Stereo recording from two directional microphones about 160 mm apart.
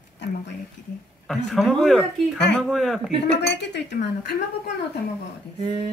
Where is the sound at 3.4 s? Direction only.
90° left.